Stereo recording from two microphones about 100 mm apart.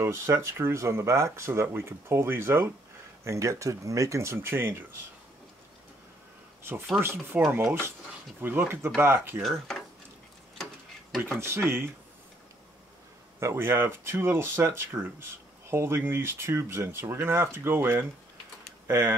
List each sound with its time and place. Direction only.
0.0 s speech: 25° right (ahead or behind)
7.0 s speech: 25° right (ahead or behind)
9.4 s speech: centre (ahead or behind)
10.6 s tick-tock: 5° left (ahead or behind)
11.3 s speech: 25° right (ahead or behind)
13.4 s speech: 25° right (ahead or behind)